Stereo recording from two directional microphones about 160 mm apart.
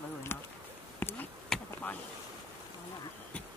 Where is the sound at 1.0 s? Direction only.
10° left (ahead or behind).